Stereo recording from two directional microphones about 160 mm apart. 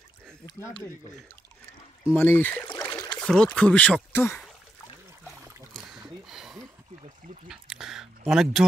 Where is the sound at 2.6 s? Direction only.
25° left (ahead or behind).